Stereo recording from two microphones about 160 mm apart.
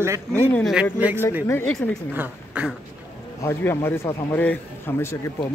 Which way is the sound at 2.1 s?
10° right (ahead or behind).